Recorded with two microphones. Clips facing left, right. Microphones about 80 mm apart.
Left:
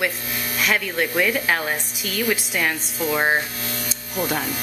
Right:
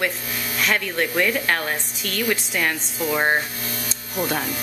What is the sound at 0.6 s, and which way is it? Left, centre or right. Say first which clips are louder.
Speech: even; centre.